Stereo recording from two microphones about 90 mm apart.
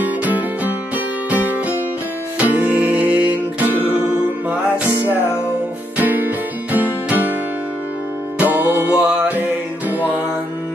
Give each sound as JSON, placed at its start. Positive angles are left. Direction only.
{"t": 0.0, "sound": "music", "side_deg": -20}
{"t": 3.6, "sound": "music", "side_deg": 25}
{"t": 5.9, "sound": "music", "side_deg": -20}
{"t": 8.4, "sound": "music", "side_deg": -20}
{"t": 9.0, "sound": "mantra", "side_deg": -10}